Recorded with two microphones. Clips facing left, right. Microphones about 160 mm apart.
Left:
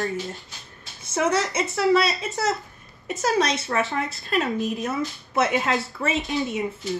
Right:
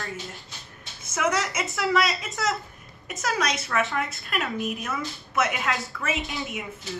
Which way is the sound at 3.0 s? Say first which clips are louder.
Left 5 dB; 30° left (ahead or behind).